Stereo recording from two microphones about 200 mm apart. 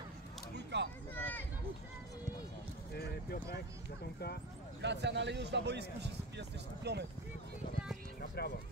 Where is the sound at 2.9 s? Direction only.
55° left (ahead or behind).